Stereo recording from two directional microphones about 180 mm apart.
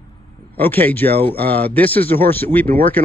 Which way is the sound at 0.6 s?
10° left (ahead or behind).